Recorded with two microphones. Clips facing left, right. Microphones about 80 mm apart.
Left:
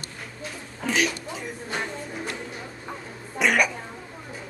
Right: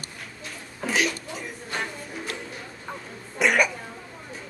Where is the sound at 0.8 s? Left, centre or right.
Centre.